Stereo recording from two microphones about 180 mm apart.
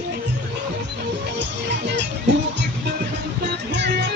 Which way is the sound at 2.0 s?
75° right (ahead or behind).